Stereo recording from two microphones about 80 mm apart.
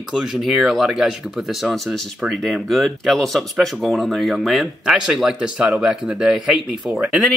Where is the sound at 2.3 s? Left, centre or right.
Centre.